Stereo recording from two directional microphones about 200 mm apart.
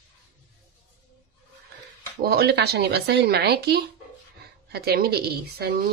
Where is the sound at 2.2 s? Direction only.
50° right (ahead or behind).